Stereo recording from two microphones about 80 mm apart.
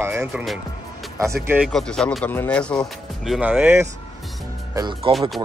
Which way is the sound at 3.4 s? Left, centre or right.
Right.